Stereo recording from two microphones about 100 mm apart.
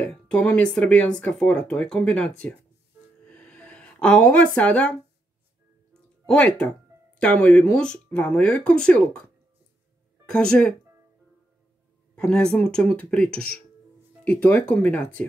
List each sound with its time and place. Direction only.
0.0 s speech: 15° left (ahead or behind)
3.3 s a sound: 10° left (ahead or behind)
6.2 s speech: 15° left (ahead or behind)
10.3 s speech: 10° left (ahead or behind)
12.2 s speech: 5° left (ahead or behind)